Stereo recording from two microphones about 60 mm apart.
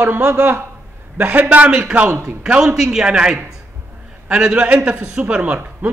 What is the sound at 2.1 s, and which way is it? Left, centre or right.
Speech, right.